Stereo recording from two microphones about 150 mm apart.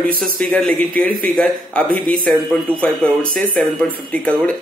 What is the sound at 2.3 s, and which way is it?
Speech, 5° left (ahead or behind).